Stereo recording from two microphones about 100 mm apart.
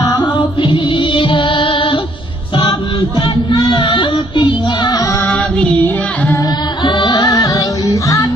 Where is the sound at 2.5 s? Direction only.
45° left (ahead or behind).